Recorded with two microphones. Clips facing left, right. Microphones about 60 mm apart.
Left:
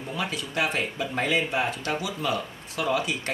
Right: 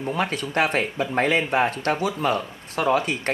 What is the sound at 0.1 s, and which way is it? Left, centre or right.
Speech, right.